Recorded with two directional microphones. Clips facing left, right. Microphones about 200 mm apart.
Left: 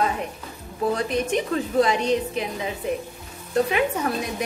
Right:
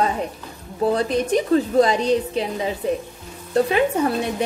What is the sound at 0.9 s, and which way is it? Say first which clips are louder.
A woman's voice: right 4 dB; 35° right (ahead or behind).